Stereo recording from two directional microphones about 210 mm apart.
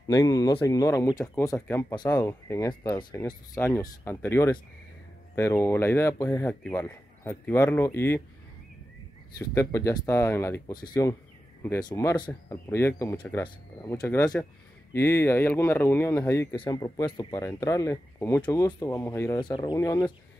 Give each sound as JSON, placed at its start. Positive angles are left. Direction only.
{"t": 0.0, "sound": "speech", "side_deg": 15}
{"t": 9.4, "sound": "speech", "side_deg": 15}